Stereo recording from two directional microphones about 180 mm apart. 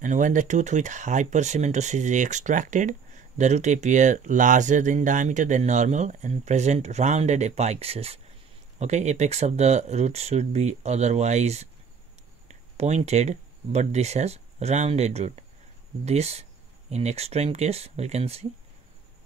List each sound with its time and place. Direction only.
0.0 s speech: 45° right (ahead or behind)